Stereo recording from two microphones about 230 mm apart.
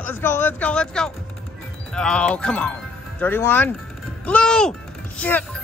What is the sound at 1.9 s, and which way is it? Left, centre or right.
Speech, centre.